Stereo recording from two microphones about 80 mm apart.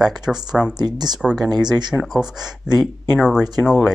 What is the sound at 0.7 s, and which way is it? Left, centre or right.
Speech, right.